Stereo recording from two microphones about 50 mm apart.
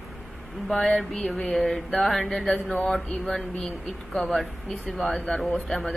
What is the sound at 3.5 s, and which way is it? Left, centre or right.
Speech, left.